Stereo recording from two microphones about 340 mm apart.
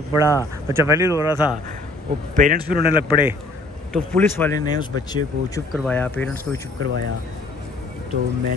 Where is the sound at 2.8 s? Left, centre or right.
Centre.